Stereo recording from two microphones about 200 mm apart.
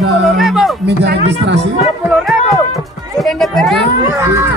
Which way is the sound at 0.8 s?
55° right (ahead or behind).